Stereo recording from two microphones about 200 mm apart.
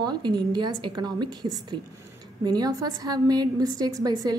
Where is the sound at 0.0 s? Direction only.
20° right (ahead or behind).